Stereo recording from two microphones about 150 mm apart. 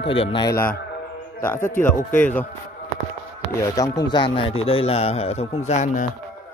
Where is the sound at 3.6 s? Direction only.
25° left (ahead or behind); by 6.0 s 50° left (ahead or behind).